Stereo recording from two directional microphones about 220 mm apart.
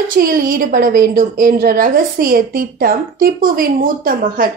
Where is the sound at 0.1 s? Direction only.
40° right (ahead or behind).